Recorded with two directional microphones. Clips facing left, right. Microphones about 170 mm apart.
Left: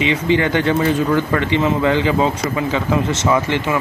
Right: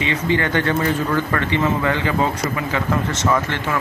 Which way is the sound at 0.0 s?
20° left (ahead or behind).